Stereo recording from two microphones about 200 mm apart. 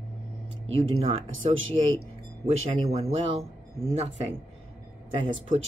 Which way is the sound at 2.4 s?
30° right (ahead or behind).